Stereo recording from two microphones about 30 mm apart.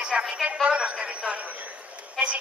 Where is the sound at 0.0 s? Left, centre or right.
Right.